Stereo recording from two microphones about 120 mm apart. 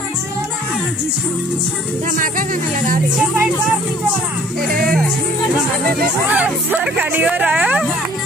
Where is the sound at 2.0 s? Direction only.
90° right.